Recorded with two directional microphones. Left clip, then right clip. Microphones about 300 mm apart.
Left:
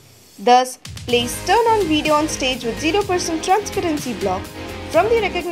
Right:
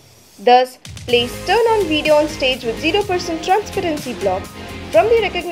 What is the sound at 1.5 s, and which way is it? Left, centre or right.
A woman's voice, left.